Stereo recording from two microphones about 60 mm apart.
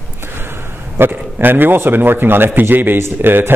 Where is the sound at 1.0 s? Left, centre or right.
Right.